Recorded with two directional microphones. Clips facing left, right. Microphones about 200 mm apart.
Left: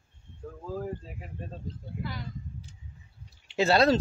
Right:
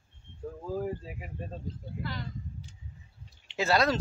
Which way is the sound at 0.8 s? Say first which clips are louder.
Right 2 dB; 10° right (ahead or behind).